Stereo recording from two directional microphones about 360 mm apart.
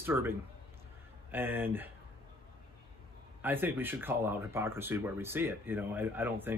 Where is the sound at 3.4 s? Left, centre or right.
Centre.